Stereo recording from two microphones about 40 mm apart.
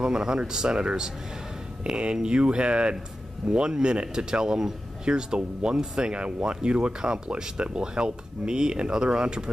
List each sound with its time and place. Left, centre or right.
0.0 s a man's voice: centre